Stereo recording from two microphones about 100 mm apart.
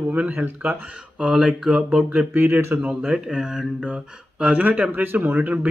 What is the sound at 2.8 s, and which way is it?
Speech, 10° right (ahead or behind).